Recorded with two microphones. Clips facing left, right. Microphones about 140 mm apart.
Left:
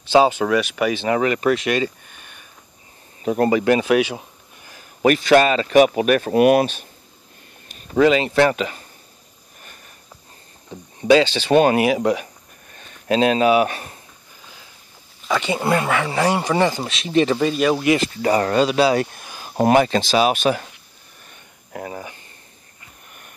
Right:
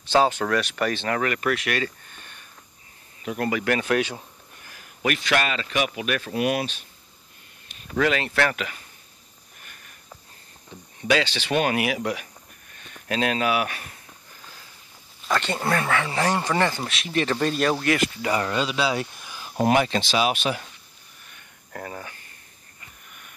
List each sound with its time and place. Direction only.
0.1 s speech: 10° left (ahead or behind)
3.3 s speech: 30° left (ahead or behind); by 4.0 s 15° left (ahead or behind)
5.0 s speech: 35° left (ahead or behind)
8.0 s speech: 20° left (ahead or behind)
11.0 s speech: 25° left (ahead or behind)
15.2 s speech: 5° left (ahead or behind); by 17.4 s 20° left (ahead or behind)
17.4 s speech: 5° left (ahead or behind)
17.8 s speech: 30° left (ahead or behind)
21.7 s speech: 10° left (ahead or behind)